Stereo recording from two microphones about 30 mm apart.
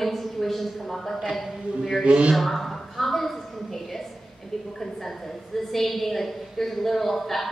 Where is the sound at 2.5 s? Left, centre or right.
Centre.